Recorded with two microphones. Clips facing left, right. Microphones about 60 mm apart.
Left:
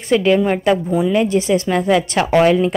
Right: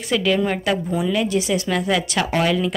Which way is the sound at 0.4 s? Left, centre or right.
Centre.